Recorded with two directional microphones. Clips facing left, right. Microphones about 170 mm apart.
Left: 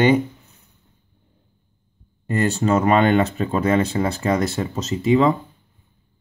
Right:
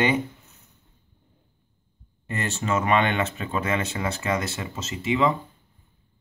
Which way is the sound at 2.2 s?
35° left (ahead or behind).